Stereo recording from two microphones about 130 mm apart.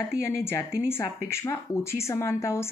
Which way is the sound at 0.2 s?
20° left (ahead or behind).